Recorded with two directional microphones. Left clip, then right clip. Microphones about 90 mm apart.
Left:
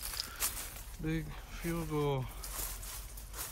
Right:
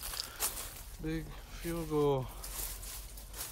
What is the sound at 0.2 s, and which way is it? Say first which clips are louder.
Walk: left 1 dB; 40° right (ahead or behind).